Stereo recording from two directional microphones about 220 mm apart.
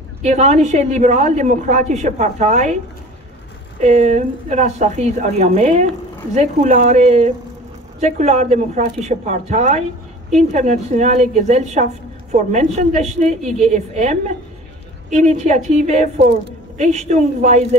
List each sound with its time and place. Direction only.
0.2 s a woman's voice: 30° right (ahead or behind)
3.8 s a woman's voice: 30° right (ahead or behind)